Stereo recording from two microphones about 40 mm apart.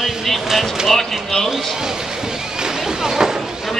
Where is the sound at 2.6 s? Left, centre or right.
Centre.